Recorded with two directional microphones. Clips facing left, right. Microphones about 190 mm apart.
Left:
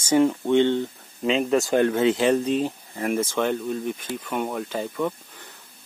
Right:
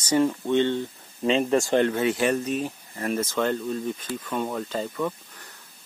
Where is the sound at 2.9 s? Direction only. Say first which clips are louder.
Left 1 dB; 10° left (ahead or behind).